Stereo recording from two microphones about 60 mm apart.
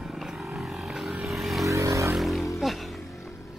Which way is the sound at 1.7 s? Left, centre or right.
Right.